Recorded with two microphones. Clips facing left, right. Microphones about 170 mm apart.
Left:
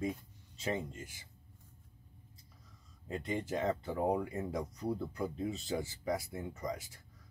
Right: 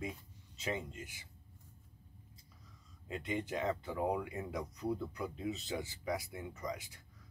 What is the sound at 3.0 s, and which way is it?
Speech, 35° left (ahead or behind).